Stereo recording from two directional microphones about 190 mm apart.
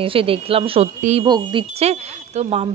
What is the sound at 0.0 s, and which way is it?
Speech, 30° right (ahead or behind).